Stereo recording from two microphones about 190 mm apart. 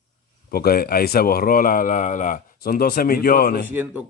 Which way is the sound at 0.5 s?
50° left (ahead or behind).